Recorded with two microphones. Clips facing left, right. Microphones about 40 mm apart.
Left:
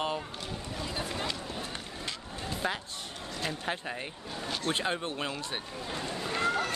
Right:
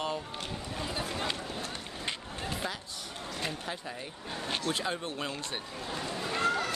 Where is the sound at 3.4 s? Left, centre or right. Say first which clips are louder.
Left 6 dB; left.